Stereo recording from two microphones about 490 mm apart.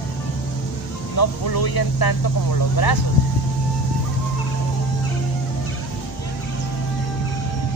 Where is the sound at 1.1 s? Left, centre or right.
Left.